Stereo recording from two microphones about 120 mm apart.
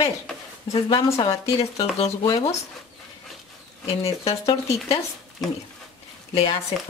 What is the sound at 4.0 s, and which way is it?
Speech, 55° left (ahead or behind).